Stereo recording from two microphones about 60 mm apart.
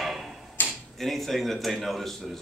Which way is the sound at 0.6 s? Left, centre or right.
Left.